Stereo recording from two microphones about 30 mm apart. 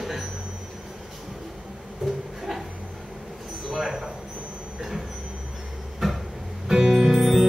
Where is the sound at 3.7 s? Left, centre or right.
Centre.